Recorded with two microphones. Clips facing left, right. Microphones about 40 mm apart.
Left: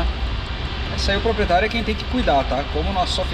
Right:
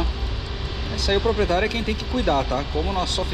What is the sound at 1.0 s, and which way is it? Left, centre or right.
Speech, left.